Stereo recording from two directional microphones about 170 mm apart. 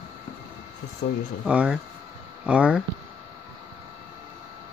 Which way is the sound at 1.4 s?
5° right (ahead or behind).